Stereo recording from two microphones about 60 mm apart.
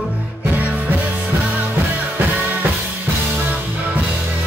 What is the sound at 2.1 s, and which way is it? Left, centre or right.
Music, right.